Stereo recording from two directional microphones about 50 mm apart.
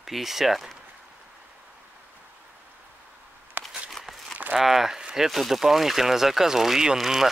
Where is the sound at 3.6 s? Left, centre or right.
Right.